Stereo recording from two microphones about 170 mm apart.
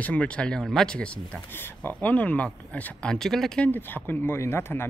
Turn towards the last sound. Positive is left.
turn(degrees=15)  # may be behind; listen again after turning